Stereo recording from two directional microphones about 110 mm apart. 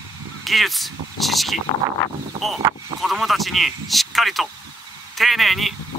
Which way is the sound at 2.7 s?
25° right (ahead or behind).